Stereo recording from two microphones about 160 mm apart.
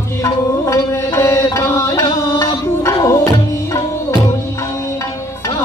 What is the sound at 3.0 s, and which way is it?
Tabla, 20° left (ahead or behind).